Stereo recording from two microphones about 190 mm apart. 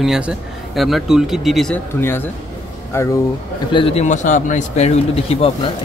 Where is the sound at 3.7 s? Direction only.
30° left (ahead or behind).